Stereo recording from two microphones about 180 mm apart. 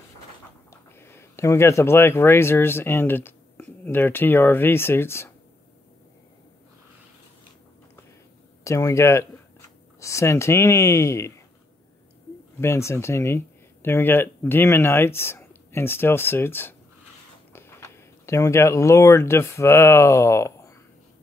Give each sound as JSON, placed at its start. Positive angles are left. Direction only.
{"t": 0.7, "sound": "speech", "side_deg": 15}
{"t": 8.6, "sound": "speech", "side_deg": 15}
{"t": 12.5, "sound": "speech", "side_deg": 15}